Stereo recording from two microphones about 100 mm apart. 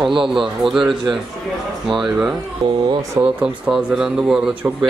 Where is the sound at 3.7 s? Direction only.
5° right (ahead or behind).